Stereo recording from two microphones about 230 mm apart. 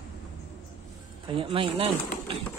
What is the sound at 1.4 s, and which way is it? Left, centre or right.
Speech, right.